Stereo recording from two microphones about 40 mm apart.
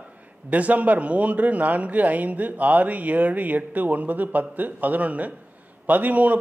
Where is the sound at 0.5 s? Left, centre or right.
Right.